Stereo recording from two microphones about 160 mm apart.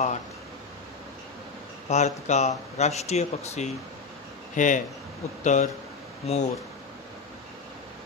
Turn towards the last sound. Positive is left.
turn(degrees=40)  # may be behind; listen again after turning